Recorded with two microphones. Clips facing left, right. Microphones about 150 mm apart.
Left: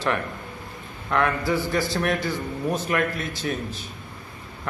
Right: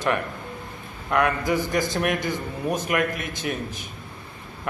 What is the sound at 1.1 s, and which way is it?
A man's voice, 15° right (ahead or behind).